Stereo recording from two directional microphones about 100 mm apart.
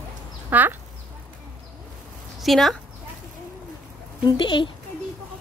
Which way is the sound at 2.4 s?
Centre (ahead or behind).